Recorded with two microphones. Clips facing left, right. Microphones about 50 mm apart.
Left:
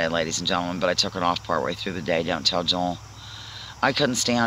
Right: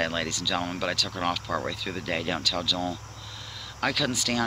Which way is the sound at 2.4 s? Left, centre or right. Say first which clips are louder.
Left 4 dB; centre.